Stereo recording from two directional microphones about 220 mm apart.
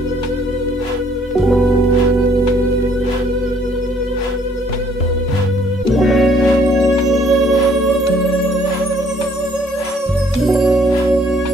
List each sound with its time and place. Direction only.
5.9 s music: centre (ahead or behind)
10.4 s music: centre (ahead or behind)